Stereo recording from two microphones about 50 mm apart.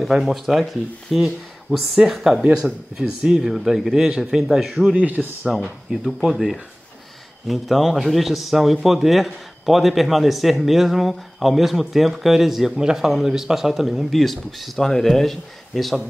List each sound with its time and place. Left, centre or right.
0.0 s a man's voice: centre
3.0 s speech: centre
4.9 s speech: right
5.4 s a man's voice: centre